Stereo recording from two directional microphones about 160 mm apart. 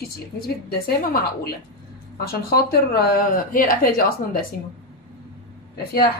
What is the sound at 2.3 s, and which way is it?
Speech, 80° left.